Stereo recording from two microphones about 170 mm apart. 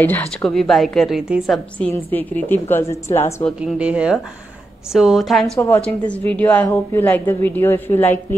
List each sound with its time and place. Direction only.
0.0 s a woman's voice: 5° left (ahead or behind)
1.9 s a woman's voice: 10° left (ahead or behind)
3.6 s a woman's voice: 5° right (ahead or behind); by 8.4 s 10° left (ahead or behind)